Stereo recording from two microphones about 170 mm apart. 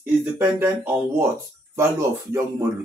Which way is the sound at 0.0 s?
15° right (ahead or behind).